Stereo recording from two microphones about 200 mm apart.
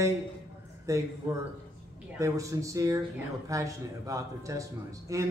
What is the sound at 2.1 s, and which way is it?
Speech, 15° right (ahead or behind).